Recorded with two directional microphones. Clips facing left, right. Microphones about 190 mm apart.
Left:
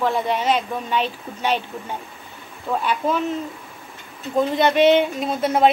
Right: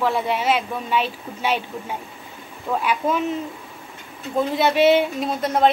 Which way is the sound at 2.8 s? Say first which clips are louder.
Even; 10° right (ahead or behind).